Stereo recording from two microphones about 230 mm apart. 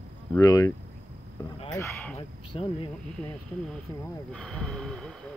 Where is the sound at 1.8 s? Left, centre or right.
Centre.